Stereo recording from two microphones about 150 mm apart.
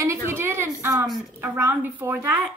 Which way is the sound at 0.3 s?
15° right (ahead or behind).